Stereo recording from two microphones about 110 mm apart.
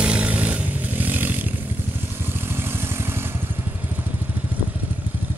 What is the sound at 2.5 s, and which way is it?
Vehicle, 20° right (ahead or behind).